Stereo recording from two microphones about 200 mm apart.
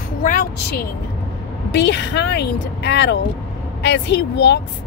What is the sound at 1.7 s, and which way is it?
Speech, 60° left (ahead or behind).